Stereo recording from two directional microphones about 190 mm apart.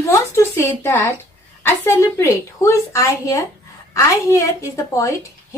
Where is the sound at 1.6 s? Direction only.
15° left (ahead or behind).